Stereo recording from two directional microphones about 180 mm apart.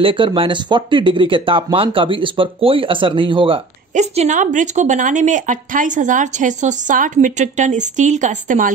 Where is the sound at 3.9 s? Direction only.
40° right (ahead or behind).